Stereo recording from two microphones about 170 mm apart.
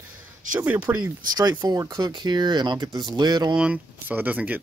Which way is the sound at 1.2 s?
25° right (ahead or behind).